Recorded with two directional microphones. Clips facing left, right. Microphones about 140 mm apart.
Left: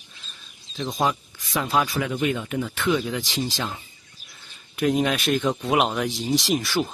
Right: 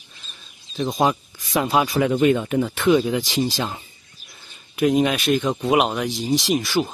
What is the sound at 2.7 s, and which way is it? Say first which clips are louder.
Speech: right 6 dB; 25° right (ahead or behind).